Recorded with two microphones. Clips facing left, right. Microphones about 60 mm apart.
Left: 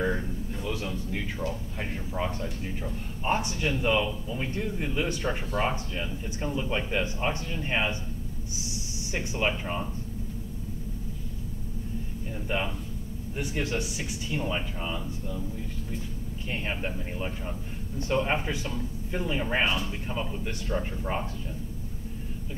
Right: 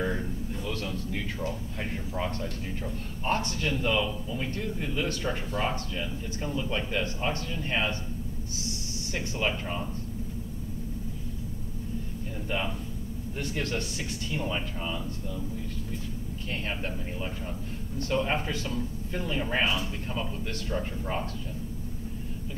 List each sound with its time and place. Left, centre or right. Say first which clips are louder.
0.7 s a man's voice: left 2 dB; centre
9.1 s a man's voice: left 2 dB; centre
13.4 s a man's voice: left 2 dB; centre
16.6 s a man's voice: left 1 dB; centre